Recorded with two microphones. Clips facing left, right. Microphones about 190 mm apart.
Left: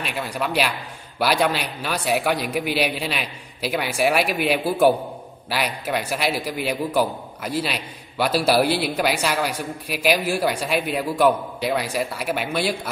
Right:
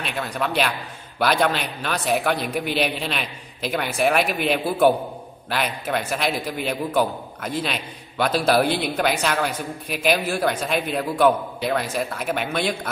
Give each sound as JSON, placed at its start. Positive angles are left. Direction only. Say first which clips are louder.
{"t": 0.0, "sound": "a man's voice", "louder": "even", "side_deg": 10}